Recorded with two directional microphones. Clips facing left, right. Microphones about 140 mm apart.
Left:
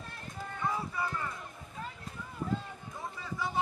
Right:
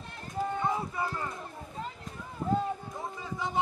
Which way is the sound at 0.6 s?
25° right (ahead or behind).